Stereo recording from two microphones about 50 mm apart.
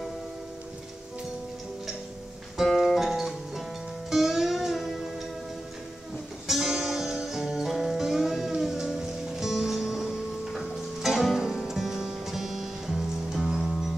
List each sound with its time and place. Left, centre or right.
2.5 s music: centre
6.4 s music: centre